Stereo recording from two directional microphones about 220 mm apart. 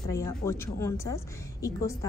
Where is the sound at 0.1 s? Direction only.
15° left (ahead or behind).